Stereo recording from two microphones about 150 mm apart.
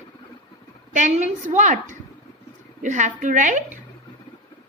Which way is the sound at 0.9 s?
55° right (ahead or behind).